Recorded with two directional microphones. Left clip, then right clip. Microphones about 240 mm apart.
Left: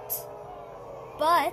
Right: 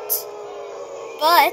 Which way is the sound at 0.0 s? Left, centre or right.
Right.